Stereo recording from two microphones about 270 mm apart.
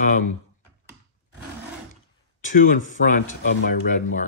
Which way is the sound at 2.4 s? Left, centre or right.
Left.